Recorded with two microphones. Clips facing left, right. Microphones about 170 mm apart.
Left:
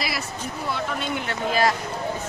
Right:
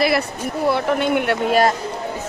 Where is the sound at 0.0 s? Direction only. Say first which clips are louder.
Right 11 dB; 60° right (ahead or behind).